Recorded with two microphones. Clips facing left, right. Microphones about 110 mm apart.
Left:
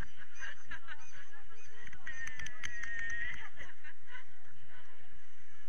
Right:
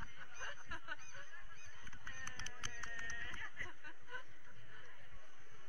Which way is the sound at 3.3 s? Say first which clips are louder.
Right 1 dB; 15° left (ahead or behind).